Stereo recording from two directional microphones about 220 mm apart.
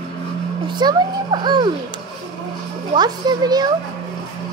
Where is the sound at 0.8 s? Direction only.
20° right (ahead or behind).